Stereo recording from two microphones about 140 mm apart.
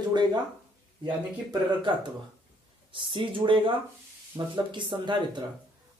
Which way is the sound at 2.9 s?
35° right (ahead or behind).